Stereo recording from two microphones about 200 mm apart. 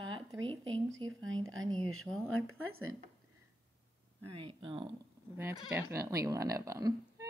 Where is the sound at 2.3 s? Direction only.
90° right.